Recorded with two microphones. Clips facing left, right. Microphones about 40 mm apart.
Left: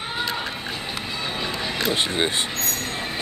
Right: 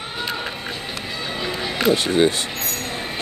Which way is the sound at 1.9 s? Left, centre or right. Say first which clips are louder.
Right 7 dB; left.